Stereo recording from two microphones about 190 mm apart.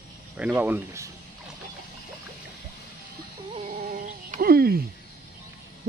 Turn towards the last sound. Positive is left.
turn(degrees=-55)  # may be behind; listen again after turning